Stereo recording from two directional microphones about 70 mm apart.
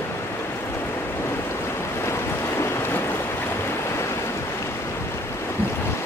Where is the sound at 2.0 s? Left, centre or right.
Left.